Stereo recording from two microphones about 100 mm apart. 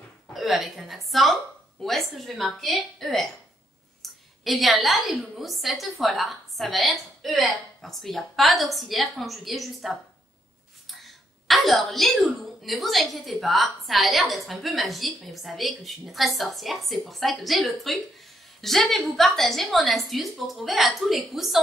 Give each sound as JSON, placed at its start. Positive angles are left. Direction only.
{"t": 0.3, "sound": "a woman's voice", "side_deg": 0}